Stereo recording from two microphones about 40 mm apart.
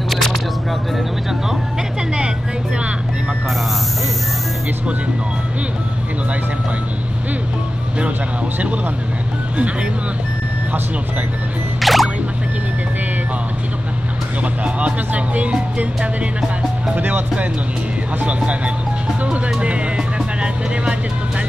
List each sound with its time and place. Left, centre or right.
0.1 s single-lens reflex camera: centre
11.8 s music: centre
14.6 s music: right
17.0 s speech: right
18.2 s speech: right